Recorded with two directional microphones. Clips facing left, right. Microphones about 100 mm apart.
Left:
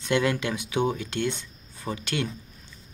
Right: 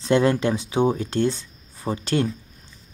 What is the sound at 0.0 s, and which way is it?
Speech, 35° right (ahead or behind).